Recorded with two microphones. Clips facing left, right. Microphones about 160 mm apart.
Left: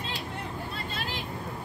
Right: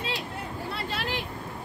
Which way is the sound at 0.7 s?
75° right (ahead or behind).